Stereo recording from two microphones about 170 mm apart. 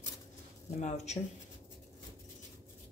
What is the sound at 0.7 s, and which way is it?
Speech, 40° left (ahead or behind).